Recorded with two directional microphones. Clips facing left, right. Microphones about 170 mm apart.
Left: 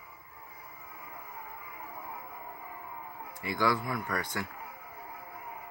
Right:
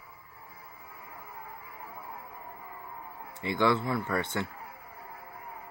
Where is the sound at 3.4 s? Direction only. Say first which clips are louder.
Right 3 dB; 25° right (ahead or behind).